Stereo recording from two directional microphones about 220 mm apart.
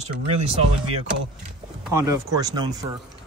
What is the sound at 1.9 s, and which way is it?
Speech, 15° right (ahead or behind).